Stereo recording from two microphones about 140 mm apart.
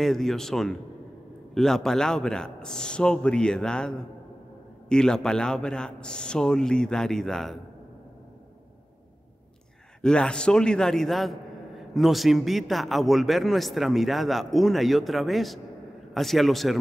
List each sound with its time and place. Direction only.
0.0 s a man's voice: centre (ahead or behind)
10.0 s a man's voice: 5° left (ahead or behind)